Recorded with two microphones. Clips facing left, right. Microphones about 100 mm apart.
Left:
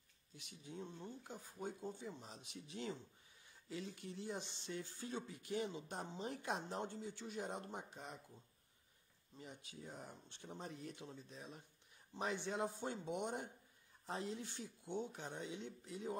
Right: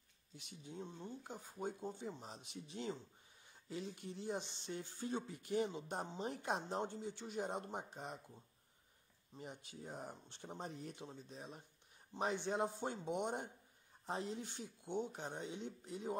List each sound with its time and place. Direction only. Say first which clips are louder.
0.4 s speech: right 1 dB; 25° right (ahead or behind)
9.7 s speech: right 4 dB; 35° right (ahead or behind)